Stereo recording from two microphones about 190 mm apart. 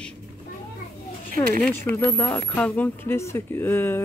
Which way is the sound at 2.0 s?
10° left (ahead or behind).